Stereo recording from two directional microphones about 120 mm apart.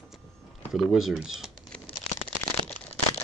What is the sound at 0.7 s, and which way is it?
Speech, centre (ahead or behind).